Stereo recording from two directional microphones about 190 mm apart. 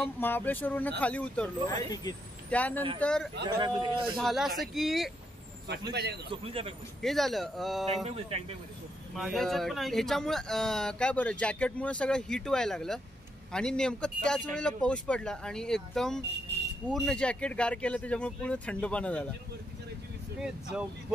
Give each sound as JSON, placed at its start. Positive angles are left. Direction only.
{"t": 0.2, "sound": "speech", "side_deg": 10}
{"t": 1.7, "sound": "speech", "side_deg": 20}
{"t": 2.5, "sound": "speech", "side_deg": 5}
{"t": 3.4, "sound": "a man's voice", "side_deg": -25}
{"t": 4.0, "sound": "speech", "side_deg": 0}
{"t": 6.3, "sound": "a man's voice", "side_deg": -30}
{"t": 7.0, "sound": "speech", "side_deg": 0}
{"t": 7.9, "sound": "speech", "side_deg": -35}
{"t": 9.1, "sound": "speech", "side_deg": 0}
{"t": 20.3, "sound": "speech", "side_deg": -5}